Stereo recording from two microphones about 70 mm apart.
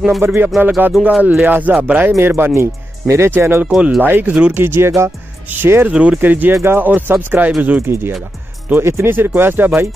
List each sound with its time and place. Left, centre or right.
0.2 s speech: right
2.1 s speech: right
3.6 s speech: centre
4.0 s speech: right
4.3 s speech: centre
4.6 s speech: right
5.9 s speech: centre
6.5 s speech: right
7.8 s speech: right